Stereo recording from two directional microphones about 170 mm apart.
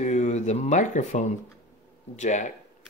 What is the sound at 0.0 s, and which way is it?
Speech, 45° left (ahead or behind).